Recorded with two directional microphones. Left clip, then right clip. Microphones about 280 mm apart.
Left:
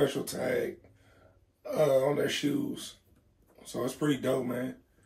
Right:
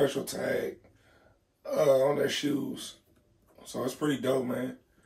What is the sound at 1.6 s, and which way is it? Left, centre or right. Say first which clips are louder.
Speech: right 2 dB; centre.